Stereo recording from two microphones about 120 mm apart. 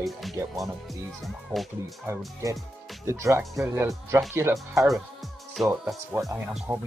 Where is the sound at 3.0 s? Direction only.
25° right (ahead or behind).